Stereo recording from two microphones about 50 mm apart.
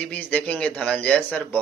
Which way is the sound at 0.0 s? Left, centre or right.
Left.